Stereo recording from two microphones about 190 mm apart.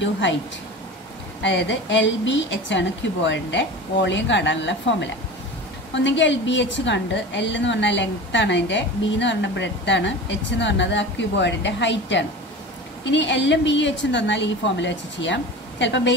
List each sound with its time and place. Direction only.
1.4 s a woman's voice: 70° left (ahead or behind)